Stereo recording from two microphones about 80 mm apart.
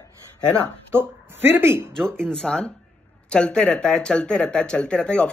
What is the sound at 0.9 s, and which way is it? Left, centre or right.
Speech, right.